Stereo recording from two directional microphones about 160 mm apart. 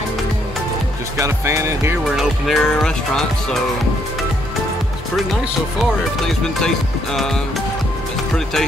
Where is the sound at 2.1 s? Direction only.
Centre (ahead or behind).